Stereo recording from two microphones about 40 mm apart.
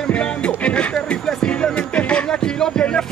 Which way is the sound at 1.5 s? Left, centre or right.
Left.